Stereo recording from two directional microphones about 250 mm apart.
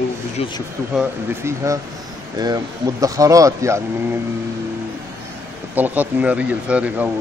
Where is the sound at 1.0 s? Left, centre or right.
Centre.